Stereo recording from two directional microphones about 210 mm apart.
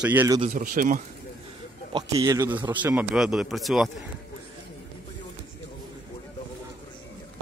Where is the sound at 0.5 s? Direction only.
40° right (ahead or behind).